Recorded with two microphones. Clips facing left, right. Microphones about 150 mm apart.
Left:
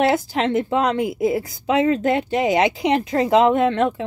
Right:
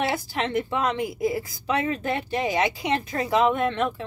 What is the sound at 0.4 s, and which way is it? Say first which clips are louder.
Speech: left 3 dB; 20° left (ahead or behind).